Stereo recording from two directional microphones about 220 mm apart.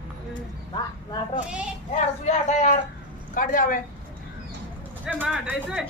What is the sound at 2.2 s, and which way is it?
Speech, 35° left (ahead or behind).